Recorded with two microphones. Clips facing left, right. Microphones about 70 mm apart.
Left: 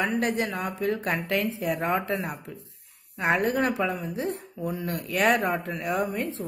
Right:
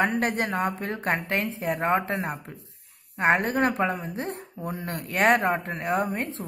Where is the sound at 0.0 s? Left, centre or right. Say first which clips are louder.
Right 1 dB; right.